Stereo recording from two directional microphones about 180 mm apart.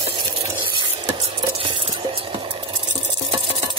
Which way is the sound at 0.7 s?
25° right (ahead or behind).